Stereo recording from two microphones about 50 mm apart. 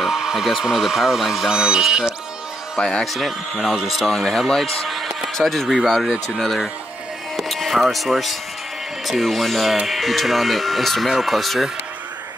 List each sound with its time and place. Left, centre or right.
0.0 s speech: centre
2.8 s speech: centre
3.1 s speech: centre
5.9 s speech: centre
6.3 s speech: centre